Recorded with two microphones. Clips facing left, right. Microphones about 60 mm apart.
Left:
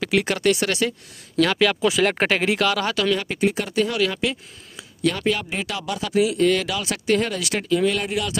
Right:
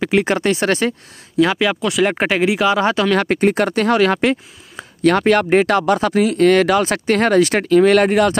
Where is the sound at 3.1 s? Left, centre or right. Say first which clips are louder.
Right 7 dB; right.